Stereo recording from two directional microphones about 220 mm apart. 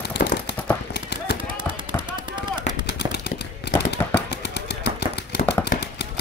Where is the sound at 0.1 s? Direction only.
50° left (ahead or behind).